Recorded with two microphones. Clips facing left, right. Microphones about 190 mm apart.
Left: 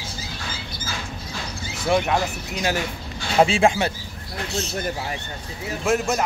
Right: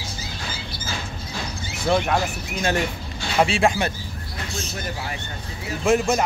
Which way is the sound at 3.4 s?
25° left (ahead or behind).